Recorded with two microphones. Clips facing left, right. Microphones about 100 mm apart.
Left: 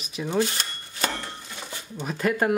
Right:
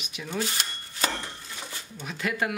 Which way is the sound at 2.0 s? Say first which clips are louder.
Left 6 dB; 40° left (ahead or behind).